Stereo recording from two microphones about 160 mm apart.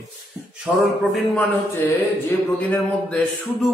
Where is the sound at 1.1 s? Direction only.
Centre (ahead or behind).